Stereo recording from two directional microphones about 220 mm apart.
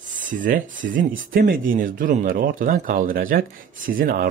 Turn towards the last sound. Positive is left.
turn(degrees=-40)  # may be behind; listen again after turning